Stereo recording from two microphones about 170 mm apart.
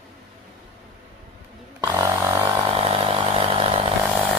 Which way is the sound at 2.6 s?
35° right (ahead or behind).